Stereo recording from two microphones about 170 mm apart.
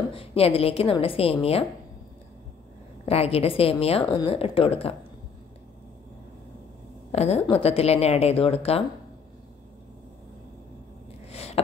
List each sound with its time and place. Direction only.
0.1 s a woman's voice: 35° left (ahead or behind)
3.1 s a woman's voice: 35° left (ahead or behind)
7.1 s a woman's voice: 40° left (ahead or behind)
11.3 s a sound: 35° left (ahead or behind)